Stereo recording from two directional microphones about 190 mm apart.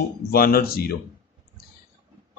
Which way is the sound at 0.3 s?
50° left (ahead or behind).